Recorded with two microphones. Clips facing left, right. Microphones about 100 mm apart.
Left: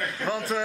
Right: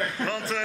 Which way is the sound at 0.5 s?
10° left (ahead or behind).